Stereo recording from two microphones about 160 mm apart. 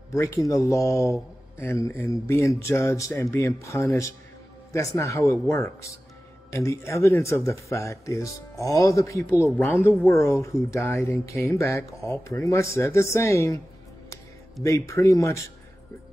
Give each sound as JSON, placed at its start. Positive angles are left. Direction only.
{"t": 0.1, "sound": "speech", "side_deg": 20}